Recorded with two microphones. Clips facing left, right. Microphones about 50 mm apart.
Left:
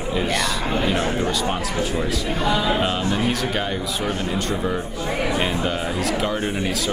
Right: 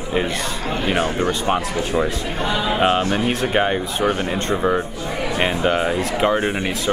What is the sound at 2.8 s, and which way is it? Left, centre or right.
Speech, right.